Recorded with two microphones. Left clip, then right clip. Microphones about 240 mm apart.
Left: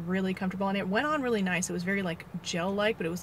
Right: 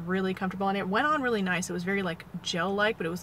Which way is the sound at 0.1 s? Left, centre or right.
Centre.